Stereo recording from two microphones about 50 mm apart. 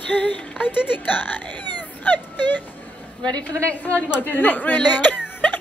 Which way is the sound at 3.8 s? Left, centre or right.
Left.